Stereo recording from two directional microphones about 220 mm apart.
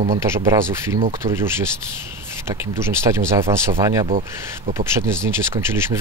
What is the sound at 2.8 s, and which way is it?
Speech, 15° right (ahead or behind).